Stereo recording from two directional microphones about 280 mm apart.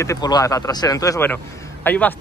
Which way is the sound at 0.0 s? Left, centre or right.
Centre.